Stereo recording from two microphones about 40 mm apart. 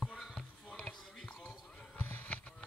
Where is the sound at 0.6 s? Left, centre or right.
Left.